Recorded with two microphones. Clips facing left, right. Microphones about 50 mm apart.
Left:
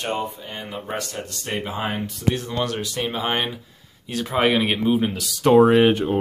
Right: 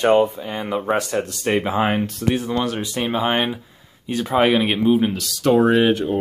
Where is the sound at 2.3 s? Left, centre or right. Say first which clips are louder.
Right 2 dB; centre.